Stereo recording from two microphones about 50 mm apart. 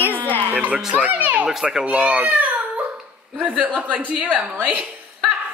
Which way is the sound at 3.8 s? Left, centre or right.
Right.